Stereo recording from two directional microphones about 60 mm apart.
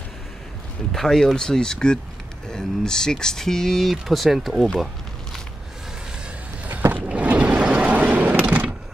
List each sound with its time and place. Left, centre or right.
0.9 s speech: centre
6.9 s vehicle: right